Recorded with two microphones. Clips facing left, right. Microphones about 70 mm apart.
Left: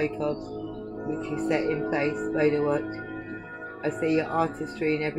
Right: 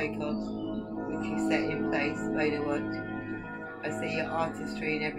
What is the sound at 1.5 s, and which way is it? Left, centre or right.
Speech, left.